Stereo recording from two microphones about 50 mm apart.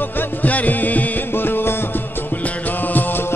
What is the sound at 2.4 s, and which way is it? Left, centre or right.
Music, left.